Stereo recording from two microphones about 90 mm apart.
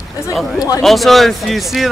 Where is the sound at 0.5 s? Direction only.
40° left (ahead or behind).